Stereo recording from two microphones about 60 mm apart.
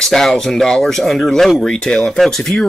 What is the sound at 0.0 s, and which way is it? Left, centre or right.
Speech, centre.